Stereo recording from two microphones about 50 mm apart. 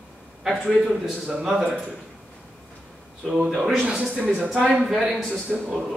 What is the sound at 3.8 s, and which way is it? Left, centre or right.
Speech, centre.